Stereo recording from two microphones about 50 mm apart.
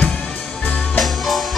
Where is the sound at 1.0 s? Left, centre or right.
Centre.